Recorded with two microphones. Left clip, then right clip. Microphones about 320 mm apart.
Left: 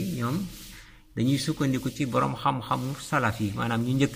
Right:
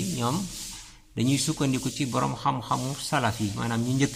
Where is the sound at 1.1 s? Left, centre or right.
Centre.